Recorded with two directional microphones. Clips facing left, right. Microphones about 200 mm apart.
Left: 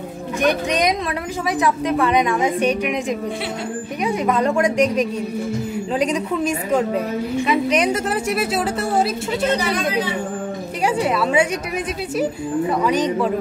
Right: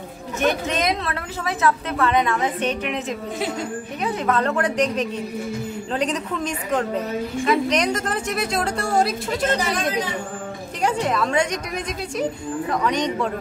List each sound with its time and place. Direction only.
0.4 s a woman's voice: 15° left (ahead or behind)
10.9 s a woman's voice: 10° left (ahead or behind)